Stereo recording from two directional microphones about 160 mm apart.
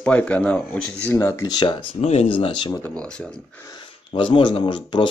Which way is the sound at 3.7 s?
30° left (ahead or behind).